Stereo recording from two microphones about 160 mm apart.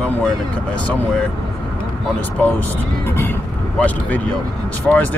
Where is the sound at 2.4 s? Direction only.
10° left (ahead or behind).